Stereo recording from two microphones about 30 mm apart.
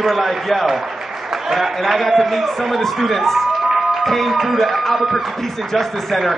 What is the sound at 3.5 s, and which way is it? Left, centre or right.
Music, centre.